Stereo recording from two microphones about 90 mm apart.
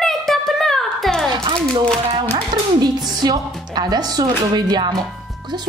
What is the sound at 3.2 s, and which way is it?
Speech, 50° right (ahead or behind).